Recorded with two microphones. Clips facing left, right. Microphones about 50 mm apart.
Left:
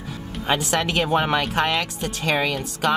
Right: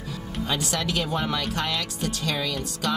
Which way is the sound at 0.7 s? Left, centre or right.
Left.